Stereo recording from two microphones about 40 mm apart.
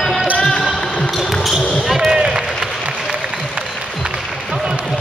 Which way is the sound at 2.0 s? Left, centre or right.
Right.